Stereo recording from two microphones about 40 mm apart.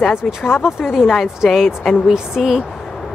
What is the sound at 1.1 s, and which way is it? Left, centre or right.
Speech, centre.